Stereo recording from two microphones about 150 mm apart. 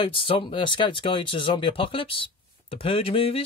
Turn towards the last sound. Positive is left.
turn(degrees=40)  # may be behind; listen again after turning